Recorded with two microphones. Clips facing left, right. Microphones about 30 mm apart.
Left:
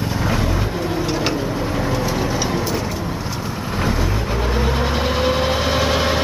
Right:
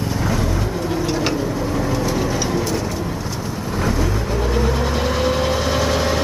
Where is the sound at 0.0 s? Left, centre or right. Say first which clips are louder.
Even; centre.